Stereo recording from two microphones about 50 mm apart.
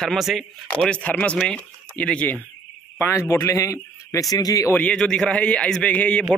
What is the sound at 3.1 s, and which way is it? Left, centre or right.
A man's voice, left.